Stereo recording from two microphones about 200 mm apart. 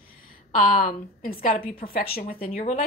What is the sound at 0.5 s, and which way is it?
A woman's voice, 40° left (ahead or behind).